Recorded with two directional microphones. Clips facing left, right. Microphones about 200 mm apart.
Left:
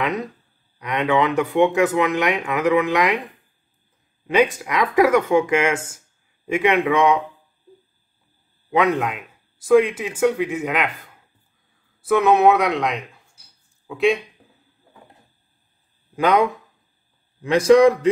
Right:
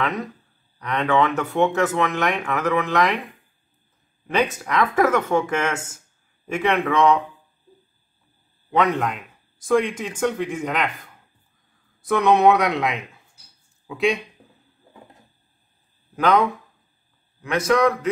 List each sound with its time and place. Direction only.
0.7 s speech: 15° left (ahead or behind)
4.3 s speech: 15° left (ahead or behind)
8.6 s a man's voice: 10° left (ahead or behind)
16.2 s speech: 15° left (ahead or behind)
17.4 s a man's voice: 30° left (ahead or behind)